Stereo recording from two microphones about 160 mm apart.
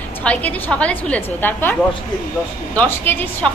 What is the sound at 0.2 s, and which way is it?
A woman's voice, 10° left (ahead or behind).